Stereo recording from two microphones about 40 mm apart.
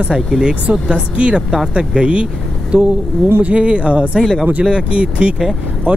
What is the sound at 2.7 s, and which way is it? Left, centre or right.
Speech, right.